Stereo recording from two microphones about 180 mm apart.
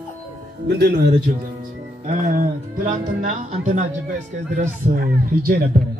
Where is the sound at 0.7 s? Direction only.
60° right (ahead or behind).